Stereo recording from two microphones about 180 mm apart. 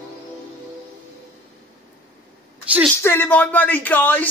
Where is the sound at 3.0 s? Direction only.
10° left (ahead or behind).